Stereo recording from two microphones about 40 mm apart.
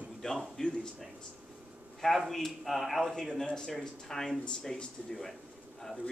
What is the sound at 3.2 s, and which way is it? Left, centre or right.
A man's voice, centre.